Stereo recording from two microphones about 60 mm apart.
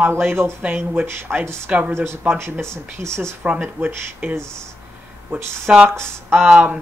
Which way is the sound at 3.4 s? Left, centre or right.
Right.